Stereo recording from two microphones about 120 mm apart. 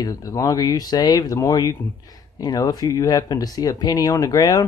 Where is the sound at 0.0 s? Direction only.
30° left (ahead or behind).